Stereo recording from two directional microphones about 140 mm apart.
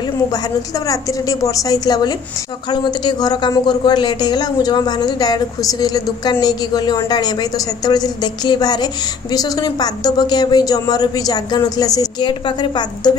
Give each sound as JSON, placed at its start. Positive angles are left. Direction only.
{"t": 0.0, "sound": "a woman's voice", "side_deg": 30}